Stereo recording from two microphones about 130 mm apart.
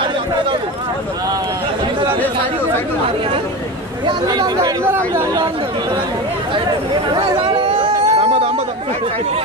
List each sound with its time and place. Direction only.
4.0 s speech: 30° right (ahead or behind)
7.2 s chatter: 40° right (ahead or behind)